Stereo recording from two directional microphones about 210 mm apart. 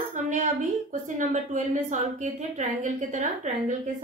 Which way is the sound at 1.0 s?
35° right (ahead or behind).